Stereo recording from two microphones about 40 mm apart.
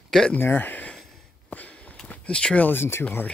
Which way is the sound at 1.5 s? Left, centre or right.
Left.